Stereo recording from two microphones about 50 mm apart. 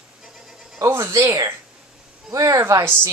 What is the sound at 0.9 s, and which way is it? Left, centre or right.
Speech, right.